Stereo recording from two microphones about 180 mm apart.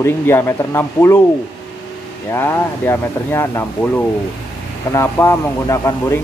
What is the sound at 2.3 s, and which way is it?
Speech, 15° left (ahead or behind).